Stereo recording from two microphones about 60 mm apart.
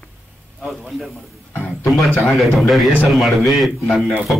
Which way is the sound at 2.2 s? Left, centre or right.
Centre.